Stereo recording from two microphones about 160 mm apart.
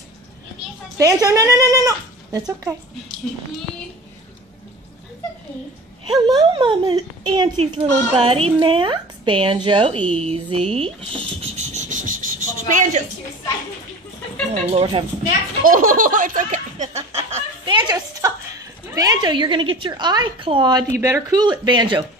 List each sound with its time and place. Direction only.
0.9 s speech: 20° right (ahead or behind)
6.0 s a woman's voice: 25° right (ahead or behind)
7.7 s speech: 40° right (ahead or behind)
10.2 s a sound: 40° right (ahead or behind)
14.7 s speech: 35° right (ahead or behind)
15.6 s laughter: 60° right (ahead or behind); by 18.3 s 25° right (ahead or behind)
18.9 s a woman's voice: 25° right (ahead or behind)
21.0 s a woman's voice: 20° right (ahead or behind)